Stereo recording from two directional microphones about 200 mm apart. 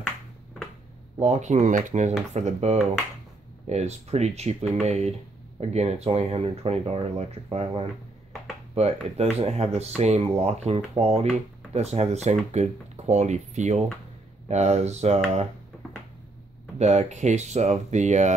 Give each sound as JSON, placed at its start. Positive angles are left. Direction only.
{"t": 1.2, "sound": "speech", "side_deg": -35}
{"t": 16.7, "sound": "speech", "side_deg": -35}